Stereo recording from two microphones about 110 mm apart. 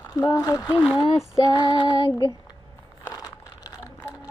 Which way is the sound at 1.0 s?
30° left (ahead or behind).